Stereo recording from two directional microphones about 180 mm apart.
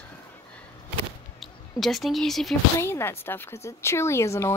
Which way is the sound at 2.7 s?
15° left (ahead or behind).